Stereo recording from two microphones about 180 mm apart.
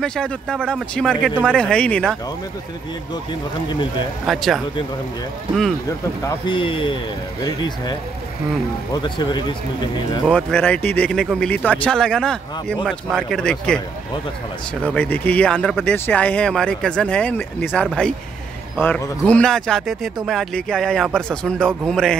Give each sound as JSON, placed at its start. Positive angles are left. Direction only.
{"t": 0.0, "sound": "speech", "side_deg": 5}
{"t": 4.3, "sound": "speech", "side_deg": 0}
{"t": 6.2, "sound": "speech", "side_deg": 25}
{"t": 8.9, "sound": "speech", "side_deg": 25}
{"t": 10.2, "sound": "speech", "side_deg": 5}
{"t": 14.8, "sound": "speech", "side_deg": 5}